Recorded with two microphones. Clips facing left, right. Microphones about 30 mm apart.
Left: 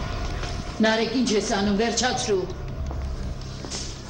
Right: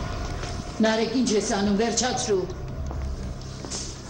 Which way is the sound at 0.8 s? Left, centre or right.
Left.